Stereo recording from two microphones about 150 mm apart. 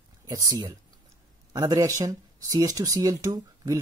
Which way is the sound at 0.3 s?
25° right (ahead or behind).